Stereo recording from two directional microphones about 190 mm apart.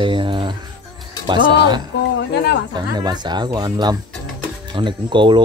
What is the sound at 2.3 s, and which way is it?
Speech, 60° left (ahead or behind).